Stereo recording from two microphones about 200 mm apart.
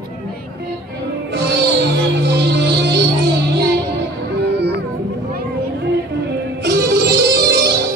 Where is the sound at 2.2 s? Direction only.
55° right (ahead or behind).